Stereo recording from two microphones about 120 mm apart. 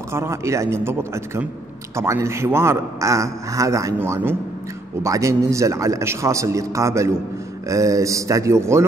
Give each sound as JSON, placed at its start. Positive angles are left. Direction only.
{"t": 0.1, "sound": "a man's voice", "side_deg": -20}